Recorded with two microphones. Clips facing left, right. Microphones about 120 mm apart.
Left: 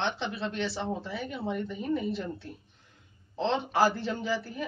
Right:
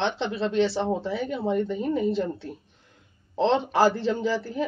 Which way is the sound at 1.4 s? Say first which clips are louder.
Right 8 dB; 55° right (ahead or behind).